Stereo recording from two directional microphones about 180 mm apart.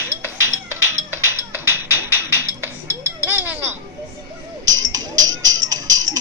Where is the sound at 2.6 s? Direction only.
10° right (ahead or behind).